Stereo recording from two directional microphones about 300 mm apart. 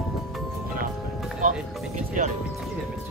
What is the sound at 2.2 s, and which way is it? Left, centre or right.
Speech, right.